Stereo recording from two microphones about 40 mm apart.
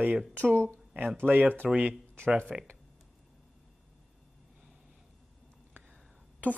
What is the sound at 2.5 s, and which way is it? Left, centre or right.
Speech, centre.